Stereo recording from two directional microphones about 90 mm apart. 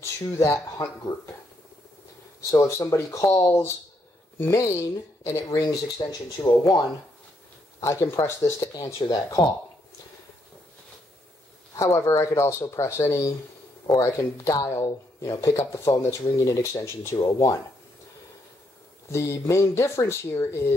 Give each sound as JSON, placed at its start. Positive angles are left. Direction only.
{"t": 0.0, "sound": "a sound", "side_deg": 30}
{"t": 0.4, "sound": "speech", "side_deg": 45}
{"t": 2.6, "sound": "speech", "side_deg": 35}
{"t": 6.4, "sound": "speech", "side_deg": 25}
{"t": 7.8, "sound": "speech", "side_deg": 35}
{"t": 11.7, "sound": "speech", "side_deg": 35}
{"t": 19.1, "sound": "speech", "side_deg": 30}